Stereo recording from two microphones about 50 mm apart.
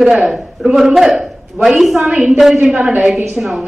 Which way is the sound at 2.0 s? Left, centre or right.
Right.